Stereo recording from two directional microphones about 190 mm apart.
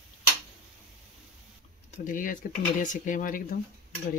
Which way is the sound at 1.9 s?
45° left (ahead or behind).